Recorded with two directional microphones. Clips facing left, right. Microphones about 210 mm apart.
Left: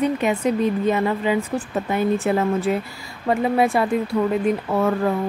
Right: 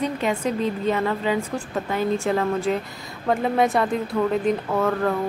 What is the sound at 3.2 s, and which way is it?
Speech, 5° left (ahead or behind).